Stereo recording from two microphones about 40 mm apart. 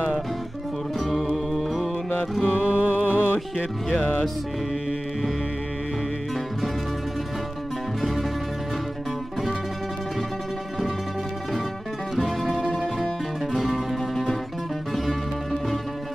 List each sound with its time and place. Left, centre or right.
0.9 s music: centre
2.5 s music: right
8.0 s music: centre
12.2 s music: centre